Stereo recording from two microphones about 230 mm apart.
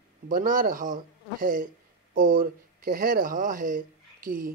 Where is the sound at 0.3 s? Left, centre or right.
Right.